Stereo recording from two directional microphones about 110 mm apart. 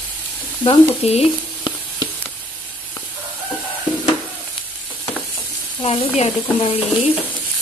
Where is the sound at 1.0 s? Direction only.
70° left (ahead or behind).